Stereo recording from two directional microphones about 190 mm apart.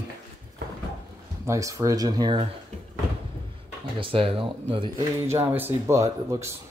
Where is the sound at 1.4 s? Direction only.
15° right (ahead or behind).